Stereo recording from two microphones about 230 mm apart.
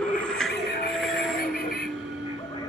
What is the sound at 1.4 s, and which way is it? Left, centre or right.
Train, left.